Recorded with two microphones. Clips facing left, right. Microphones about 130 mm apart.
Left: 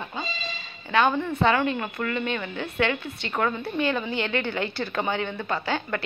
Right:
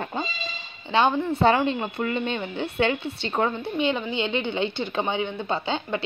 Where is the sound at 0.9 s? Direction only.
25° right (ahead or behind).